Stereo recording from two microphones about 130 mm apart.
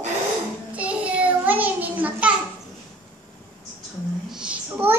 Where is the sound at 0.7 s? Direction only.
10° right (ahead or behind).